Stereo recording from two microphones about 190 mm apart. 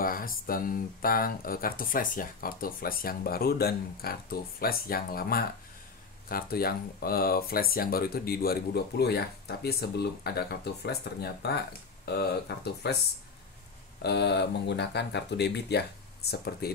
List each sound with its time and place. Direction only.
0.0 s speech: 50° left (ahead or behind)
14.0 s speech: 60° left (ahead or behind)